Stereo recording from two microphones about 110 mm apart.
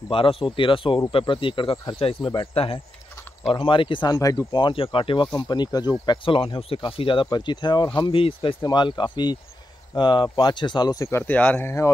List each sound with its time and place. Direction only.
0.1 s speech: 55° left (ahead or behind)
4.1 s speech: 30° left (ahead or behind); by 5.3 s 50° left (ahead or behind)
5.5 s speech: 40° left (ahead or behind)
7.2 s speech: 40° left (ahead or behind)
8.0 s speech: 55° left (ahead or behind); by 11.9 s 25° left (ahead or behind)